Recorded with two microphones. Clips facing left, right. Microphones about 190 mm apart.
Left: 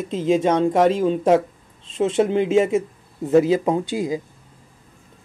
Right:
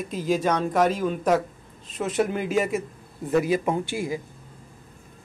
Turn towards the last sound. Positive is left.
turn(degrees=20)  # may be behind; listen again after turning